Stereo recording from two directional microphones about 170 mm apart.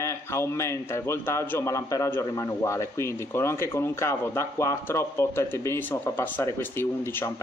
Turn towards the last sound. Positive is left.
turn(degrees=15)  # may be behind; listen again after turning